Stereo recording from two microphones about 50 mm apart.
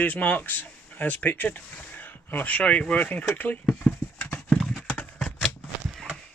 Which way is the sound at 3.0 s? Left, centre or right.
Left.